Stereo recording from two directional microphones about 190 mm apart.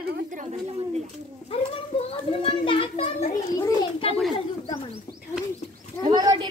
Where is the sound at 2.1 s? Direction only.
30° left (ahead or behind).